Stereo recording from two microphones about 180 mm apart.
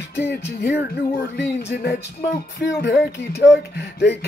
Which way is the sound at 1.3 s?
65° left (ahead or behind).